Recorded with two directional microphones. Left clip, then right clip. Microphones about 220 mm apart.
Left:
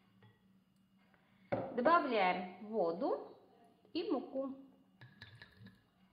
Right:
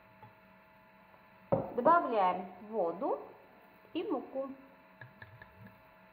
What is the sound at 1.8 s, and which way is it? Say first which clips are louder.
A woman's voice: right 3 dB; 20° left (ahead or behind).